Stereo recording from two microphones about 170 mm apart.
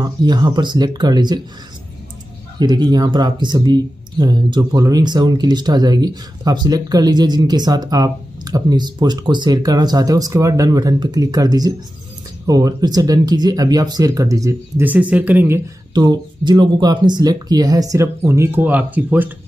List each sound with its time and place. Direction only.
0.0 s speech: 25° right (ahead or behind)
2.6 s speech: 25° right (ahead or behind)
15.9 s speech: 25° right (ahead or behind); by 19.2 s 10° right (ahead or behind)